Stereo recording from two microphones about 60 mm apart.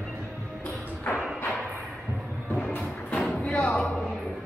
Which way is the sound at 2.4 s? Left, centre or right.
Centre.